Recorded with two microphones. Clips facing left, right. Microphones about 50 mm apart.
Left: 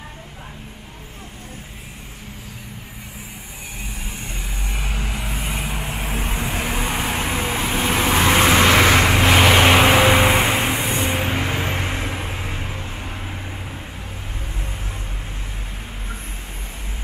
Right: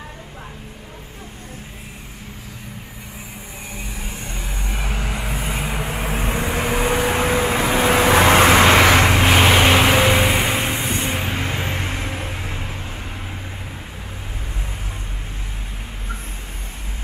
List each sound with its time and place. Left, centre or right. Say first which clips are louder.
4.3 s vehicle: right 1 dB; centre
7.1 s vehicle: right 5 dB; right
8.5 s vehicle: right 2 dB; centre